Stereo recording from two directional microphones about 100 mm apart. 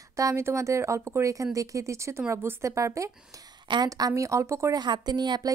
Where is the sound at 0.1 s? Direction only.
30° right (ahead or behind).